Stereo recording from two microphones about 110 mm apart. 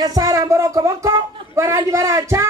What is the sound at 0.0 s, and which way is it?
Speech, 35° right (ahead or behind).